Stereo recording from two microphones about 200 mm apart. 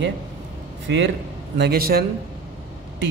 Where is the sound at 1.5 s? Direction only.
50° right (ahead or behind).